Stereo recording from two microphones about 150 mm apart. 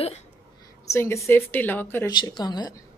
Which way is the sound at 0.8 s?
20° left (ahead or behind).